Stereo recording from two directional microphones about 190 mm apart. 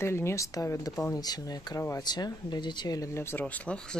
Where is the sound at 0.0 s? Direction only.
15° left (ahead or behind).